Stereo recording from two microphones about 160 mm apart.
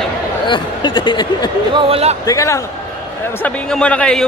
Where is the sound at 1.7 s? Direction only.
35° right (ahead or behind).